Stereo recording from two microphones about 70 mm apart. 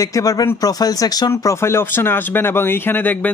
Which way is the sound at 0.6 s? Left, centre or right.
Left.